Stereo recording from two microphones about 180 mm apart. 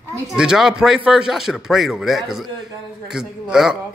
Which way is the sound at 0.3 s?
5° right (ahead or behind).